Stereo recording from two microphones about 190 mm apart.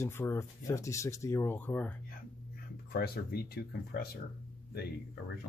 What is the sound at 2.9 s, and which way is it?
Speech, 55° left (ahead or behind).